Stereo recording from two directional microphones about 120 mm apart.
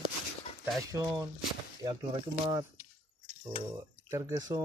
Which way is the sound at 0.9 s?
25° right (ahead or behind).